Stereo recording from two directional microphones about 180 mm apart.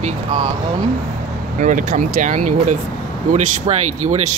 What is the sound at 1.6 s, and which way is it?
Speech, 45° right (ahead or behind).